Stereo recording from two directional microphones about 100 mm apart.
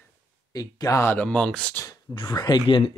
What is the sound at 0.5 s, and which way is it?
Speech, 35° left (ahead or behind).